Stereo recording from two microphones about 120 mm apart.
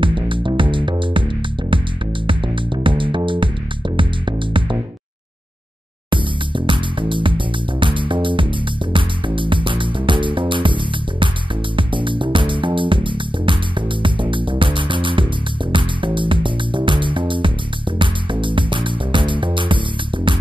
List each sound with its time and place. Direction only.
0.0 s music: 45° right (ahead or behind)
2.2 s music: 45° right (ahead or behind)
6.6 s music: 45° right (ahead or behind)